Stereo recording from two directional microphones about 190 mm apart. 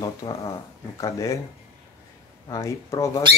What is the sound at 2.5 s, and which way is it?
Speech, 15° left (ahead or behind).